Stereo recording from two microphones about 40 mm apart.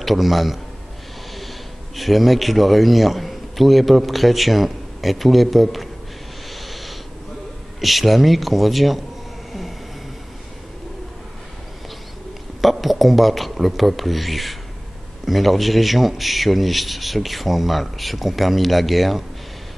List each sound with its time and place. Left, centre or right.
0.0 s speech: centre
2.0 s speech: centre
6.5 s a sound: centre
7.8 s speech: centre
12.9 s speech: centre